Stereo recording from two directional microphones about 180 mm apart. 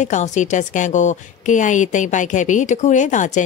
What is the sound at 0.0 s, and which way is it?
A woman's voice, 40° left (ahead or behind).